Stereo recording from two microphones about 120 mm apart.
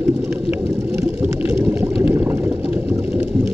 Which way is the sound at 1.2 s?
15° right (ahead or behind).